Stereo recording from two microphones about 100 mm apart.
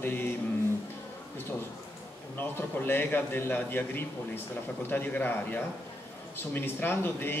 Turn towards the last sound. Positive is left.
turn(degrees=20)  # may be behind; listen again after turning